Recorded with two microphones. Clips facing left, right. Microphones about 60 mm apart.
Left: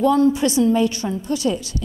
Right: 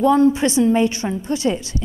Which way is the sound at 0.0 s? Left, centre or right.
Right.